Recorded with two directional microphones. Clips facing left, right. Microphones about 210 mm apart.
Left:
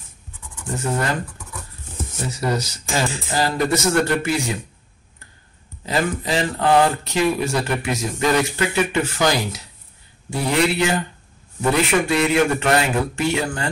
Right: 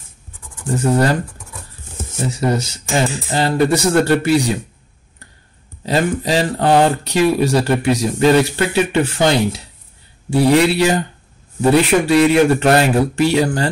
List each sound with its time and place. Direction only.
0.7 s speech: 35° right (ahead or behind)
5.9 s speech: 30° right (ahead or behind)